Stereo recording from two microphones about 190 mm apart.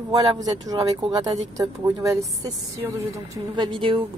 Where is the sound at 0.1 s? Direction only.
25° right (ahead or behind).